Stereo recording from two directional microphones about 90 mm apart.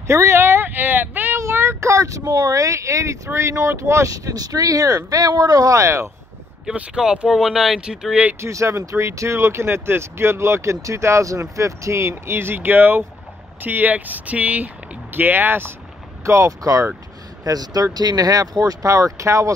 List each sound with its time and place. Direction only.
0.0 s a sound: 30° right (ahead or behind)
1.4 s speech: 30° right (ahead or behind)
6.6 s speech: 10° right (ahead or behind)
8.4 s speech: 35° right (ahead or behind)
16.3 s speech: 35° right (ahead or behind)